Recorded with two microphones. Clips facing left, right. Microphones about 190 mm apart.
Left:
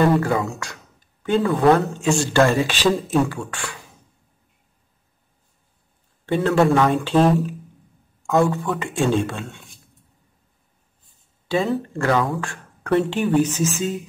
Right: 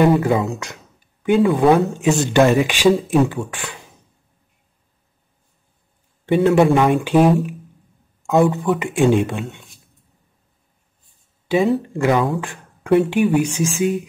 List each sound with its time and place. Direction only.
0.0 s speech: 20° right (ahead or behind)
3.3 s speech: 20° right (ahead or behind)
6.2 s speech: 15° right (ahead or behind)
11.4 s speech: 15° right (ahead or behind)